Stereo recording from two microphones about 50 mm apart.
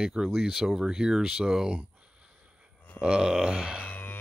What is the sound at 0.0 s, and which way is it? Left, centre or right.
Speech, centre.